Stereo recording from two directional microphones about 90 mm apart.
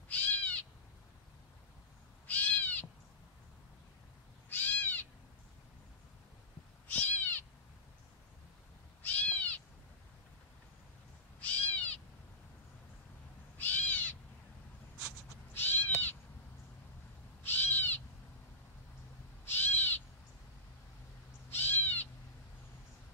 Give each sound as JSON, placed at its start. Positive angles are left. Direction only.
{"t": 0.1, "sound": "owl", "side_deg": 15}
{"t": 2.2, "sound": "owl", "side_deg": 20}
{"t": 4.5, "sound": "owl", "side_deg": 20}
{"t": 6.9, "sound": "cat", "side_deg": 20}
{"t": 9.0, "sound": "cat", "side_deg": 20}
{"t": 11.4, "sound": "owl", "side_deg": 15}
{"t": 13.6, "sound": "owl", "side_deg": 20}
{"t": 15.5, "sound": "cat", "side_deg": 25}
{"t": 17.4, "sound": "owl", "side_deg": 25}
{"t": 19.4, "sound": "owl", "side_deg": 25}
{"t": 21.5, "sound": "owl", "side_deg": 25}